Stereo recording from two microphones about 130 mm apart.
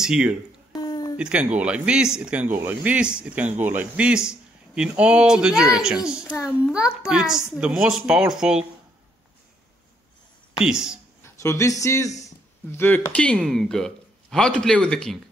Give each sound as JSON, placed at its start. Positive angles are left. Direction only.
{"t": 0.0, "sound": "a man's voice", "side_deg": -5}
{"t": 0.7, "sound": "a sound", "side_deg": 30}
{"t": 1.1, "sound": "a man's voice", "side_deg": -10}
{"t": 10.6, "sound": "a man's voice", "side_deg": -5}
{"t": 11.2, "sound": "speech", "side_deg": 20}
{"t": 12.7, "sound": "a man's voice", "side_deg": 15}